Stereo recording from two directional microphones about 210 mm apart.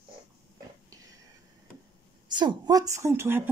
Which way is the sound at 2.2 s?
20° right (ahead or behind).